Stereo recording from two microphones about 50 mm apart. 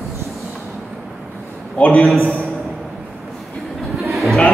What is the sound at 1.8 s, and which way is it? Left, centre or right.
Speech, left.